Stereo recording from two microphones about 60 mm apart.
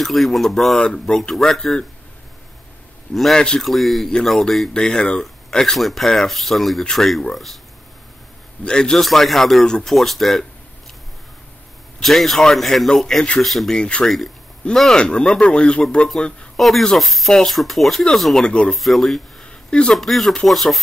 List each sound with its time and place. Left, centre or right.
0.0 s speech: centre
3.3 s speech: centre
3.6 s speech: centre
8.6 s speech: centre
12.0 s speech: centre
14.0 s speech: centre
14.8 s speech: centre
16.5 s speech: centre
18.8 s speech: centre
19.4 s a sound: centre
20.0 s speech: centre